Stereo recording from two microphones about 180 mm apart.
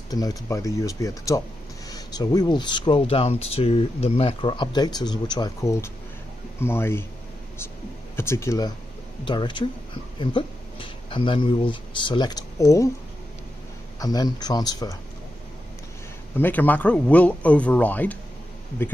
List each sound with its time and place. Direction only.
0.1 s speech: 20° left (ahead or behind)
8.2 s speech: 15° left (ahead or behind)
13.9 s speech: 20° left (ahead or behind)
16.3 s speech: 10° left (ahead or behind)